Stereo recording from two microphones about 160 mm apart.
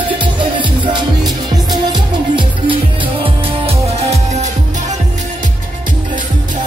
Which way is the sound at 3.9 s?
40° right (ahead or behind).